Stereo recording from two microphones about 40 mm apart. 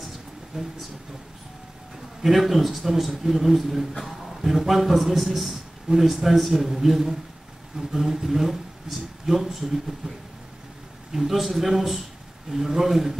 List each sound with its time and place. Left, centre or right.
0.5 s speech: centre
2.2 s a man's voice: centre
11.1 s a man's voice: centre